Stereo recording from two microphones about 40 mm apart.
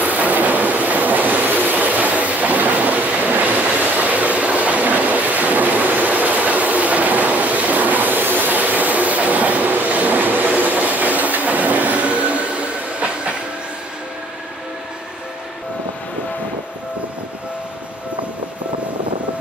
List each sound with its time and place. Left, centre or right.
0.0 s train: right